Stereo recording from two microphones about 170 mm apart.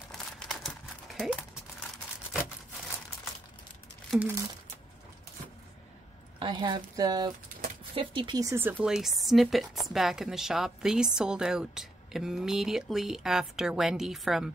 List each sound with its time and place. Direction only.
0.5 s crumpling: centre (ahead or behind)
4.1 s speech: 5° right (ahead or behind)
6.4 s speech: 25° right (ahead or behind); by 14.5 s centre (ahead or behind)